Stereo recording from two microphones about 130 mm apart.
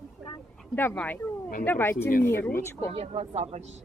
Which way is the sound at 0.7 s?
15° left (ahead or behind).